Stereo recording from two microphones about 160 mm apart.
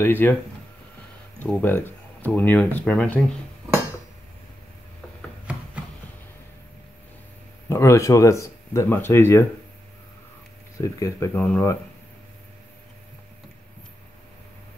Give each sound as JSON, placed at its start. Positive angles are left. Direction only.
{"t": 0.0, "sound": "speech", "side_deg": 10}
{"t": 1.4, "sound": "speech", "side_deg": 10}
{"t": 7.7, "sound": "speech", "side_deg": 20}
{"t": 10.8, "sound": "speech", "side_deg": 20}